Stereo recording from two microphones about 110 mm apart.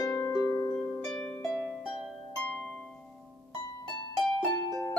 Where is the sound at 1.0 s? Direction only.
5° left (ahead or behind).